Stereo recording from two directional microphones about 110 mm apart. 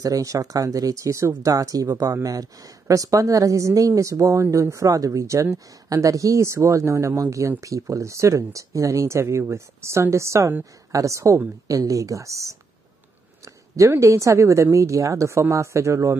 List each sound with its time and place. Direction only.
0.0 s a woman's voice: 30° right (ahead or behind)
13.7 s a woman's voice: 25° right (ahead or behind)